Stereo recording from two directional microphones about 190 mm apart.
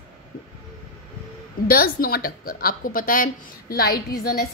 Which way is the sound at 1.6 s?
50° left (ahead or behind).